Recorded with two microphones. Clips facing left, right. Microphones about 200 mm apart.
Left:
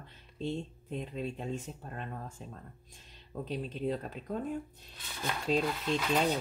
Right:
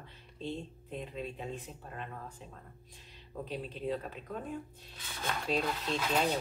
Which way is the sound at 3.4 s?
40° left (ahead or behind).